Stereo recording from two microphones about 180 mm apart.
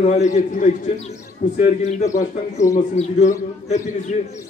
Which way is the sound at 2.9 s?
40° left (ahead or behind).